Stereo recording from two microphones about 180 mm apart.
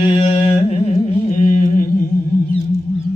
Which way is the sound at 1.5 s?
40° left (ahead or behind).